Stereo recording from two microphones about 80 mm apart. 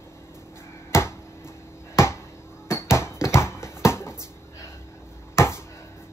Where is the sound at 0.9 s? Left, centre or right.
Left.